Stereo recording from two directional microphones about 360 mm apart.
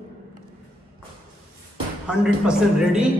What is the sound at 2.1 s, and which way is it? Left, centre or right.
Speech, centre.